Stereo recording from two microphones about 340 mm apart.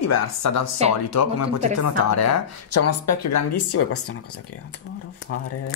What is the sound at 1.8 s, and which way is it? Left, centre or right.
Speech, left.